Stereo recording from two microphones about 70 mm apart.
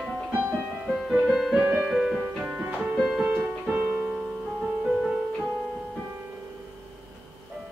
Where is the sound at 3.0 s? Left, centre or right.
Centre.